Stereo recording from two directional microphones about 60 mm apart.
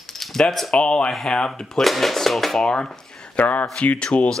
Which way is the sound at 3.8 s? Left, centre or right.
Centre.